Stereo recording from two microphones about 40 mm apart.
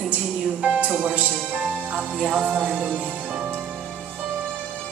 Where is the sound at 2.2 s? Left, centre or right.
Right.